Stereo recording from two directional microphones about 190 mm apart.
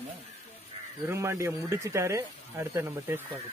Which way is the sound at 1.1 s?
15° right (ahead or behind).